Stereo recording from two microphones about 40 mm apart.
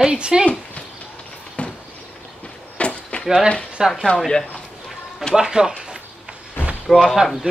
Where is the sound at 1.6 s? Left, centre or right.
Left.